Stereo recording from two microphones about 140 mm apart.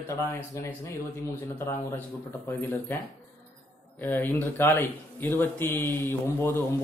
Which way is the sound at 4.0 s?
15° left (ahead or behind).